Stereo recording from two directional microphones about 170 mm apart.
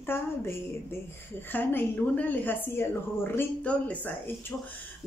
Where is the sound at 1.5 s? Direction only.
10° left (ahead or behind).